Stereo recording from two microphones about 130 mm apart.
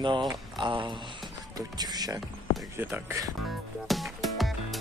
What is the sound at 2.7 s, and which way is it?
Speech, 15° right (ahead or behind).